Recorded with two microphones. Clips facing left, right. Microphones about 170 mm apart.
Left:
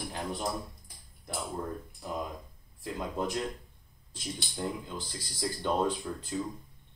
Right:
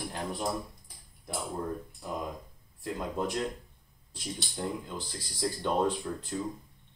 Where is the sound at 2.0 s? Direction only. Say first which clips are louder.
Even; centre (ahead or behind).